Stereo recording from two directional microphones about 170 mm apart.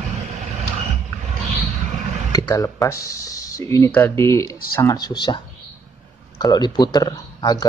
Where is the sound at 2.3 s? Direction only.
20° left (ahead or behind).